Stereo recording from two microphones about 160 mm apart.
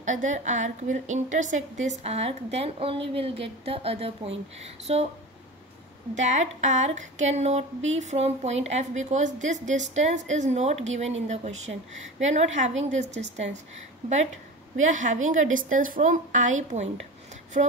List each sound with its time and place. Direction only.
0.0 s a woman's voice: 50° right (ahead or behind)
6.1 s speech: 45° right (ahead or behind)
14.8 s speech: 50° right (ahead or behind)